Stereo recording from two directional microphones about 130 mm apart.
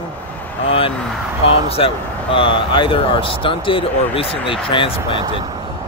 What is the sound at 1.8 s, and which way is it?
Speech, 45° left (ahead or behind).